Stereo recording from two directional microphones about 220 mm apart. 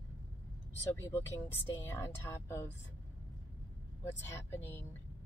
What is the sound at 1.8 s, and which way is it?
Speech, 10° left (ahead or behind).